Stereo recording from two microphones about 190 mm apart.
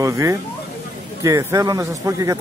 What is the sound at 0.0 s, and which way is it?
Speech, 15° right (ahead or behind).